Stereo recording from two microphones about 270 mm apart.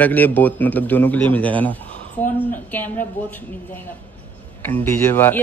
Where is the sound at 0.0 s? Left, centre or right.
Centre.